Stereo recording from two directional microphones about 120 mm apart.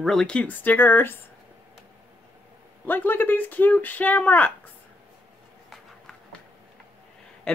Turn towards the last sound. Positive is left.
turn(degrees=5)  # may be behind; listen again after turning